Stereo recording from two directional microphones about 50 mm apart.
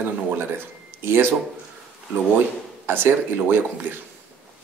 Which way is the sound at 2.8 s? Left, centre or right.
Right.